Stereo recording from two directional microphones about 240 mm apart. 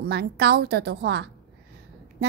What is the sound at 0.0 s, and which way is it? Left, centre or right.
Speech, right.